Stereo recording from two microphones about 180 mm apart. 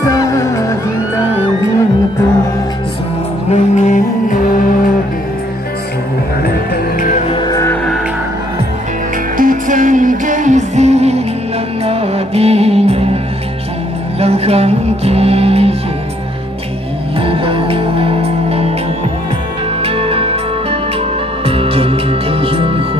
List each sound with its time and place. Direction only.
0.0 s music: 20° left (ahead or behind)
3.4 s music: 45° left (ahead or behind)
6.4 s music: 55° left (ahead or behind)
7.2 s music: 25° left (ahead or behind)
9.4 s music: 45° right (ahead or behind)
14.2 s music: 35° right (ahead or behind)
17.2 s music: 30° right (ahead or behind)
19.8 s music: 30° right (ahead or behind)
21.5 s music: 30° right (ahead or behind)